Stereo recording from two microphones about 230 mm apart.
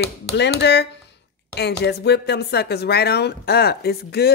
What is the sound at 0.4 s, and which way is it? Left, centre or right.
Speech, left.